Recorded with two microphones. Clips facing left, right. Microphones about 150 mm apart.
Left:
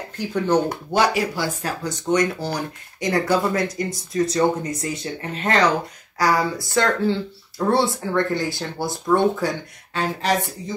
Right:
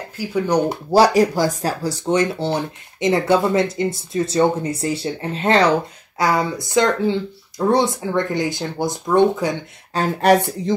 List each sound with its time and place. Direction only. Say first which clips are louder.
0.2 s speech: right 1 dB; 10° right (ahead or behind)
0.9 s speech: right 7 dB; 40° right (ahead or behind); by 9.6 s 20° right (ahead or behind)
9.9 s speech: right 4 dB; 40° right (ahead or behind)